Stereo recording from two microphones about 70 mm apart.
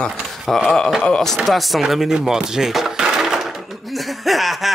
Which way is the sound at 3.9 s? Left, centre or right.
Centre.